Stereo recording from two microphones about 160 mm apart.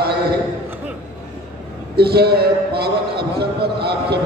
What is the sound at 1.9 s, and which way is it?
Speech, 85° right.